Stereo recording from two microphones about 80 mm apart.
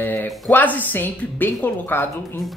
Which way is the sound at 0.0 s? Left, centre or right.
Left.